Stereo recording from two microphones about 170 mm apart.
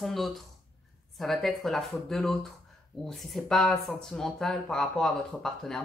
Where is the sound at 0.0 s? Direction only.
Centre (ahead or behind).